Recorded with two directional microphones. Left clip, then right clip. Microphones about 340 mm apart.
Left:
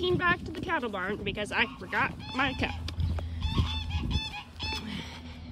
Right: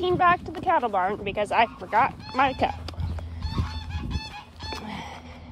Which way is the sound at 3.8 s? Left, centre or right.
Centre.